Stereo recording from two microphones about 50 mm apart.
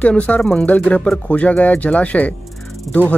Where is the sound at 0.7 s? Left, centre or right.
Left.